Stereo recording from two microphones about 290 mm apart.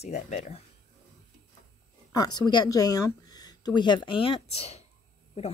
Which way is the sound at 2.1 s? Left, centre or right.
Centre.